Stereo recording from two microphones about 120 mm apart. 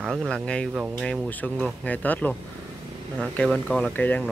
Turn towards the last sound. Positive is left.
turn(degrees=15)  # may be behind; listen again after turning